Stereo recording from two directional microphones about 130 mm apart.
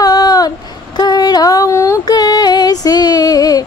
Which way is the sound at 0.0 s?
30° left (ahead or behind).